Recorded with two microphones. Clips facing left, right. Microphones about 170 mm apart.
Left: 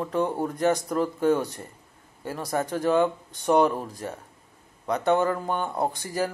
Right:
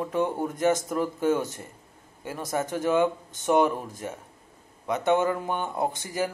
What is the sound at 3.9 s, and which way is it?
Speech, 20° right (ahead or behind).